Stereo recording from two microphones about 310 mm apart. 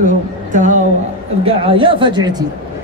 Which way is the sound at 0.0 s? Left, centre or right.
Right.